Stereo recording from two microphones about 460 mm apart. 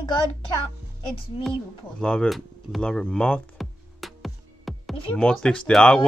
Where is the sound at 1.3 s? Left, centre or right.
Centre.